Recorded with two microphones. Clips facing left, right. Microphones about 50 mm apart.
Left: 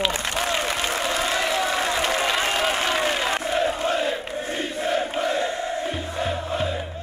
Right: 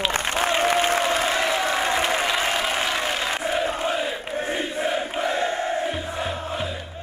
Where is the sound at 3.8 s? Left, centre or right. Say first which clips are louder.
Left 2 dB; centre.